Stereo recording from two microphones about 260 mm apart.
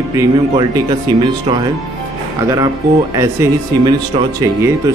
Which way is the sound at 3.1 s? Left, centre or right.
Centre.